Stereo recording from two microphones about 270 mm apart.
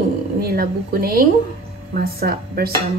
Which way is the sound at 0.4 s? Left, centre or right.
Right.